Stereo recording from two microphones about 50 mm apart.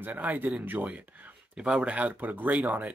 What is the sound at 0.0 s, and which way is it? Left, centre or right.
Speech, right.